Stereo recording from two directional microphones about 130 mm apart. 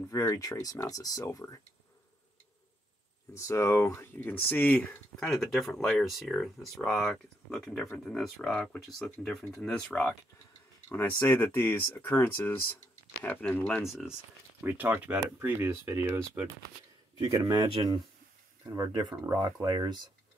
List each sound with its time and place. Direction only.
0.0 s speech: 20° left (ahead or behind)
3.3 s speech: 20° left (ahead or behind)
5.3 s speech: centre (ahead or behind)
14.6 s speech: 15° right (ahead or behind)
17.2 s speech: 35° right (ahead or behind)